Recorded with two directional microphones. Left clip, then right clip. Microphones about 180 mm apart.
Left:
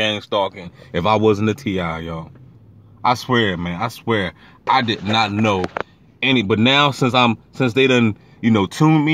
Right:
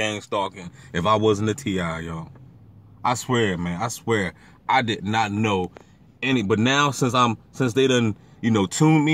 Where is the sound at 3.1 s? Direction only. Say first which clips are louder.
Left 5 dB; 10° left (ahead or behind); by 5.4 s 30° left (ahead or behind).